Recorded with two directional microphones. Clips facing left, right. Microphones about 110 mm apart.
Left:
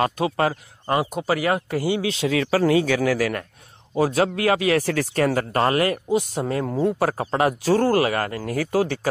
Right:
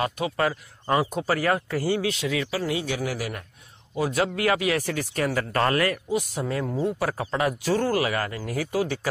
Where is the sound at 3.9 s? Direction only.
35° left (ahead or behind).